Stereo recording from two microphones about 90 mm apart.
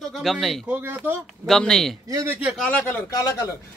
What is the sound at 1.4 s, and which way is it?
A man's voice, 5° left (ahead or behind).